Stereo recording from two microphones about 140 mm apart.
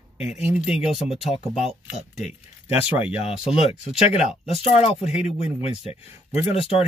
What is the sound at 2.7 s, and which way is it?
Speech, 10° right (ahead or behind).